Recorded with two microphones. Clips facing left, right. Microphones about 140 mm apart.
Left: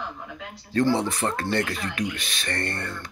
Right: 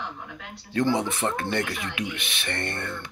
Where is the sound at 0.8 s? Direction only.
20° right (ahead or behind).